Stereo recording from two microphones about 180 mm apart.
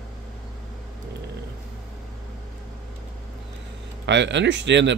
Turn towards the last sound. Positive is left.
turn(degrees=-80)